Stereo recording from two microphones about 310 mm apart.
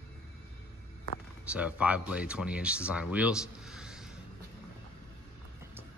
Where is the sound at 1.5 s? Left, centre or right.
Centre.